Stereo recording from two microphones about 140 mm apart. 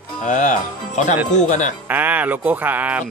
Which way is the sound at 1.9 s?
10° right (ahead or behind).